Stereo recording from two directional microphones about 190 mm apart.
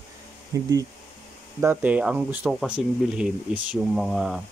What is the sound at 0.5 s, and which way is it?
Speech, 15° right (ahead or behind).